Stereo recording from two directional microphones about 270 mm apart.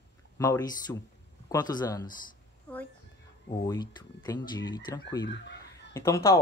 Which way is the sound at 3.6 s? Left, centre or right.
Centre.